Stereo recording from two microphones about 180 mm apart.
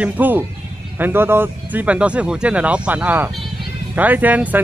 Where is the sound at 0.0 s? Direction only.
10° right (ahead or behind).